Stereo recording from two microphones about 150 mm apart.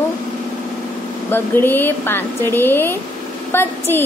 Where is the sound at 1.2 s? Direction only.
15° left (ahead or behind).